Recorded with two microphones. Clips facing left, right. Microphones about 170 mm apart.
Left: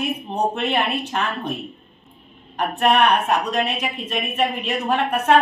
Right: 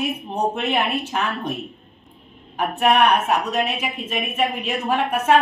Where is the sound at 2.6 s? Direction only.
5° right (ahead or behind).